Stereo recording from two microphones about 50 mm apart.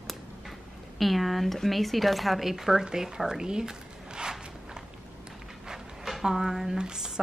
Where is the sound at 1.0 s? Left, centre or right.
Centre.